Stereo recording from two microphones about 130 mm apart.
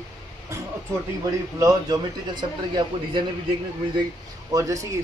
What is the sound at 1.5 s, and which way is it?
Speech, 30° right (ahead or behind).